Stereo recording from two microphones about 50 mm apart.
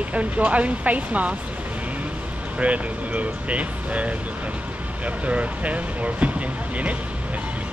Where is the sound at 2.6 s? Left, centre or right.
Right.